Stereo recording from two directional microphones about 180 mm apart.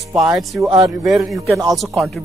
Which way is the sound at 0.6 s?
20° right (ahead or behind).